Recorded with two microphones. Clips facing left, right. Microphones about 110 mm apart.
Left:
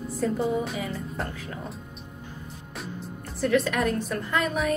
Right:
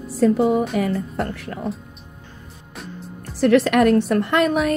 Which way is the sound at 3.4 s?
75° right (ahead or behind).